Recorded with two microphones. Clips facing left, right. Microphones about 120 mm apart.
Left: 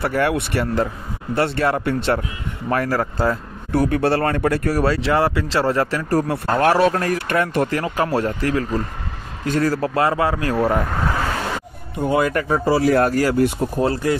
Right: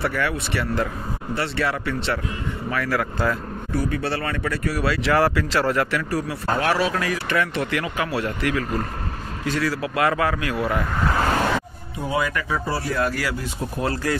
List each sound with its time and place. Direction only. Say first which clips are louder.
0.0 s speech: left 5 dB; 45° left (ahead or behind)
3.7 s speech: left 7 dB; 60° left (ahead or behind)
4.1 s speech: left 7 dB; 45° left (ahead or behind)
5.1 s speech: left 1 dB; 25° left (ahead or behind); by 10.8 s 40° left (ahead or behind)
12.1 s speech: left 5 dB; 50° left (ahead or behind)
12.6 s speech: left 9 dB; 90° left
13.0 s speech: left 6 dB; 45° left (ahead or behind)
13.7 s speech: left 4 dB; 25° left (ahead or behind)